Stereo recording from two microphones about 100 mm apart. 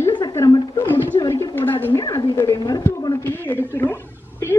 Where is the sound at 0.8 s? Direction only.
20° left (ahead or behind).